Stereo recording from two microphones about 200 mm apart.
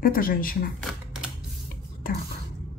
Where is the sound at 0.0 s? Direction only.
45° left (ahead or behind).